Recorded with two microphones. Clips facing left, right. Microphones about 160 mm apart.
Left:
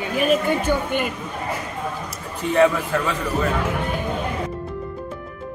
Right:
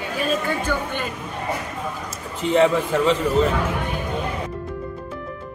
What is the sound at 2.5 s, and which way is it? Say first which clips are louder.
Speech: even; 20° right (ahead or behind).